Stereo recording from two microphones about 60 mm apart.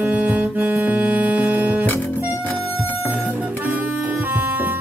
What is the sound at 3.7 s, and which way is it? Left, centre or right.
Music, right.